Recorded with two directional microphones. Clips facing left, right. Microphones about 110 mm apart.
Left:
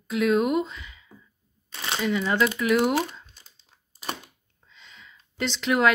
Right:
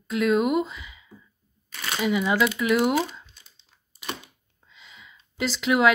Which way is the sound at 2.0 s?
10° right (ahead or behind).